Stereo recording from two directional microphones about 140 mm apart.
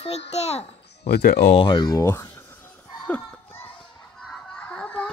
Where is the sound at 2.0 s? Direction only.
20° left (ahead or behind).